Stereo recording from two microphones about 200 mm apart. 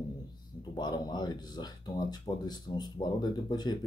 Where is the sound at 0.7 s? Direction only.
20° left (ahead or behind).